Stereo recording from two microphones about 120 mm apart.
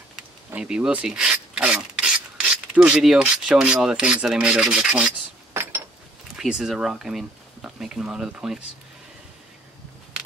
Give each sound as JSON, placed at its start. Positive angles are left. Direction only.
{"t": 0.6, "sound": "speech", "side_deg": -10}
{"t": 1.0, "sound": "mechanisms", "side_deg": -5}
{"t": 5.5, "sound": "mechanisms", "side_deg": -20}
{"t": 6.3, "sound": "speech", "side_deg": -5}